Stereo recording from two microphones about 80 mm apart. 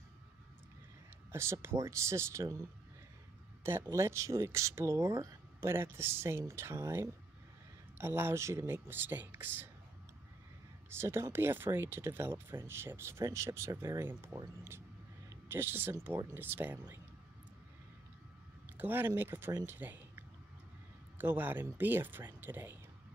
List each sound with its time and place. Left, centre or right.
1.3 s speech: right
3.6 s speech: right
10.9 s speech: right
15.4 s speech: right
18.7 s speech: right